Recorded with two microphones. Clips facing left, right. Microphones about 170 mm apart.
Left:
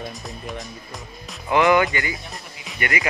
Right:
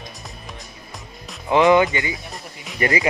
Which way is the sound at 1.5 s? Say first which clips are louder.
Right 3 dB; 20° right (ahead or behind).